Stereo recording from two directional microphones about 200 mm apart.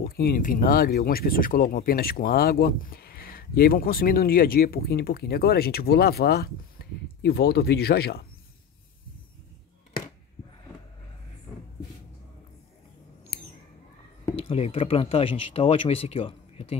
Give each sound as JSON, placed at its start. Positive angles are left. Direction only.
{"t": 0.0, "sound": "speech", "side_deg": 50}
{"t": 14.3, "sound": "speech", "side_deg": 30}